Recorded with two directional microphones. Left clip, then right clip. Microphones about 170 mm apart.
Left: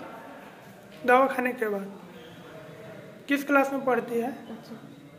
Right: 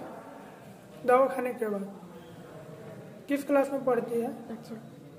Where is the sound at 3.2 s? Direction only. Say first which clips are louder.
Left 3 dB; 10° left (ahead or behind).